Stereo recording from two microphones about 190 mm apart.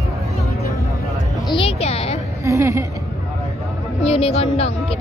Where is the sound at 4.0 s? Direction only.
30° left (ahead or behind).